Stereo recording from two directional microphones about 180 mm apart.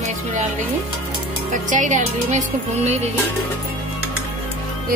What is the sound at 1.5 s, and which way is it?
Speech, 45° right (ahead or behind).